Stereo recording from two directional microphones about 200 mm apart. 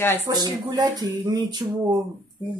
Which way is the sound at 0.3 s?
20° right (ahead or behind).